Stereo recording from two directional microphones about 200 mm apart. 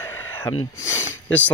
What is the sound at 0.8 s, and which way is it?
Speech, 15° left (ahead or behind).